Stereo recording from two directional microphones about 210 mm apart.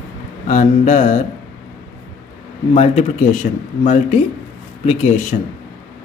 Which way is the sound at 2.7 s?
30° left (ahead or behind).